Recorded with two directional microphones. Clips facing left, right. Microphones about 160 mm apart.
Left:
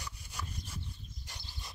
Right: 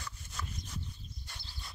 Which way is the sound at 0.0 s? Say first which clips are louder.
Even; 10° left (ahead or behind).